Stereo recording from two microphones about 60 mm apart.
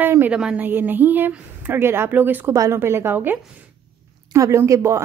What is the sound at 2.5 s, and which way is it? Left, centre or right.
Speech, right.